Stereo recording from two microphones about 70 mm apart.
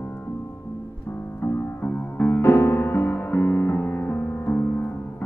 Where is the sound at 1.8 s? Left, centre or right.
Left.